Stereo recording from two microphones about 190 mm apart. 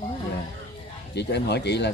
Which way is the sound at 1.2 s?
60° left (ahead or behind).